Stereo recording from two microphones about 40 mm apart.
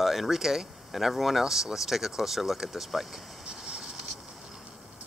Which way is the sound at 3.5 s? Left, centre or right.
Centre.